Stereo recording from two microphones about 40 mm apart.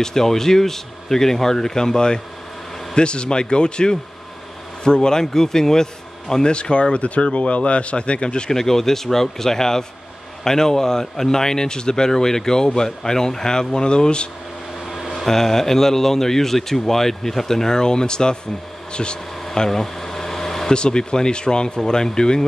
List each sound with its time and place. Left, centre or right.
0.0 s speech: centre
6.5 s speech: left
8.5 s speech: centre
14.9 s a sound: centre
15.2 s speech: centre
19.5 s air conditioning: centre
20.7 s speech: left